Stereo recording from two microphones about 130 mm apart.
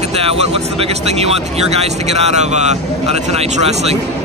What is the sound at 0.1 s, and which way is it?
Speech, 50° right (ahead or behind).